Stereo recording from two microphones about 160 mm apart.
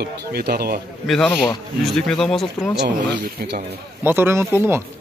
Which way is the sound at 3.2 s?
85° right.